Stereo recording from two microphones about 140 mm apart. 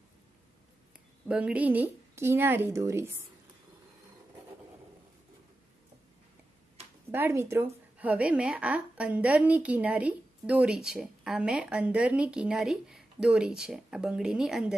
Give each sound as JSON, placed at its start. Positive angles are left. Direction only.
{"t": 1.3, "sound": "a woman's voice", "side_deg": -10}
{"t": 7.1, "sound": "a woman's voice", "side_deg": -15}